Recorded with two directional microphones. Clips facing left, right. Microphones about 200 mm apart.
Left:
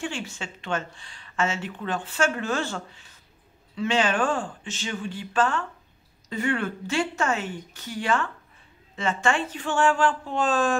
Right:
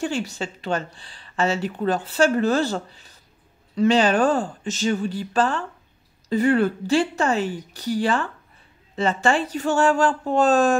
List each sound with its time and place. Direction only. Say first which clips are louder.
0.0 s speech: right 7 dB; 40° right (ahead or behind)